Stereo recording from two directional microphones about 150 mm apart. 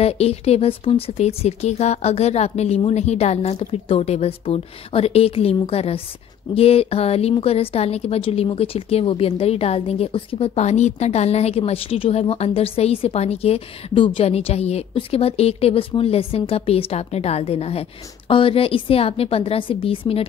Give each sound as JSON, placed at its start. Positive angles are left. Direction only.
{"t": 0.0, "sound": "a woman's voice", "side_deg": 45}